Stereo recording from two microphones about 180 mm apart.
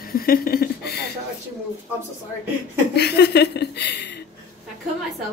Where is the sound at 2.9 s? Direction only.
70° left (ahead or behind).